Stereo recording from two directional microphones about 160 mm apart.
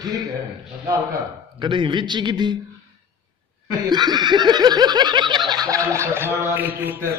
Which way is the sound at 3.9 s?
25° right (ahead or behind).